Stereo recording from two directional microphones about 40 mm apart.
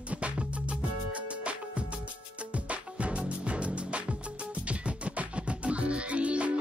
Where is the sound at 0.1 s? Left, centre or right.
Right.